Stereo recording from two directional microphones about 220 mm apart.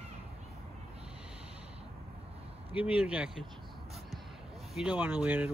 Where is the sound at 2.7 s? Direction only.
5° right (ahead or behind).